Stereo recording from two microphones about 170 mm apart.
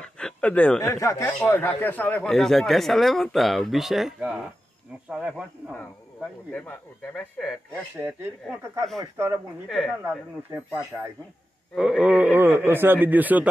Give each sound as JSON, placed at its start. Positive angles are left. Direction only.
{"t": 0.0, "sound": "a sound", "side_deg": 5}
{"t": 0.7, "sound": "speech", "side_deg": 20}
{"t": 6.5, "sound": "a man's voice", "side_deg": 10}
{"t": 7.9, "sound": "a man's voice", "side_deg": -15}
{"t": 9.7, "sound": "speech", "side_deg": 5}
{"t": 10.0, "sound": "a man's voice", "side_deg": -15}
{"t": 11.7, "sound": "a man's voice", "side_deg": -5}